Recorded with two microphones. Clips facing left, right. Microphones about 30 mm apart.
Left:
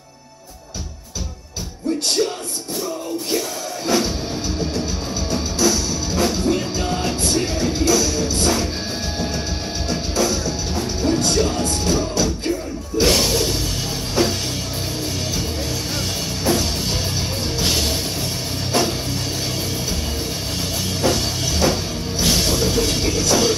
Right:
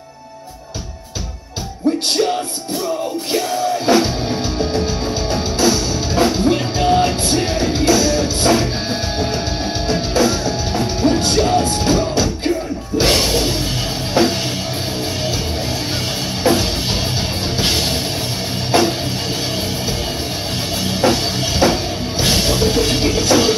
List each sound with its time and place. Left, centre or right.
2.2 s music: right
3.3 s music: right
16.4 s music: right
20.9 s music: right